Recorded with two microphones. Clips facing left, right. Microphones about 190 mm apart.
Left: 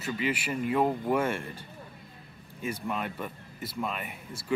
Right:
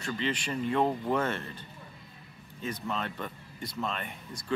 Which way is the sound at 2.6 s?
10° left (ahead or behind).